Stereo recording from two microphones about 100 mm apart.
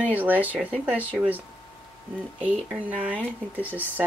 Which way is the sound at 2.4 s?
15° right (ahead or behind).